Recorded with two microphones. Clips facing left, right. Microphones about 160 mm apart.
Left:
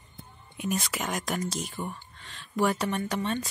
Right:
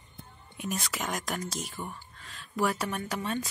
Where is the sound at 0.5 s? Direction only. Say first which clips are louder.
Left 4 dB; centre (ahead or behind).